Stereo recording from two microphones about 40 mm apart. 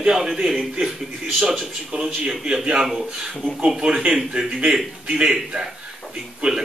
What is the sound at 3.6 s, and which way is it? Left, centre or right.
A man's voice, centre.